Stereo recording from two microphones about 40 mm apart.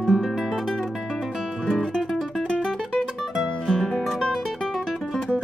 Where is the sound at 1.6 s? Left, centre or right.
Centre.